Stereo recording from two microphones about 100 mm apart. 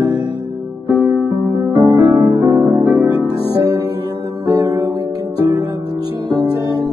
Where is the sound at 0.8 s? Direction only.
25° right (ahead or behind).